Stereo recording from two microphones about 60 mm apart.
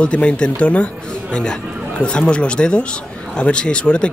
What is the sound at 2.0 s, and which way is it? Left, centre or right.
A man's voice, centre.